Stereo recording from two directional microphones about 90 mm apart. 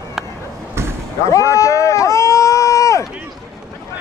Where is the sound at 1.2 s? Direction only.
35° left (ahead or behind).